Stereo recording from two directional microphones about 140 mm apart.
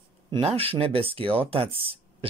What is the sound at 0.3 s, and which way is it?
Speech, 45° right (ahead or behind).